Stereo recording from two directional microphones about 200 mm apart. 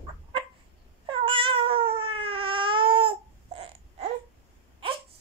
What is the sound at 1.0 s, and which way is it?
Cat, 25° right (ahead or behind).